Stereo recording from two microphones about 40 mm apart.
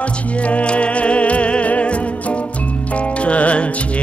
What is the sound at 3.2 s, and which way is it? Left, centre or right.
Music, left.